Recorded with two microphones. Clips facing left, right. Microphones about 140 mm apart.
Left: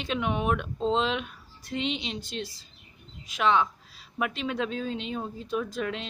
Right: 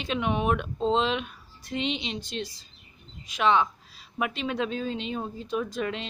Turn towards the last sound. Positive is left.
turn(degrees=0)  # may be behind; listen again after turning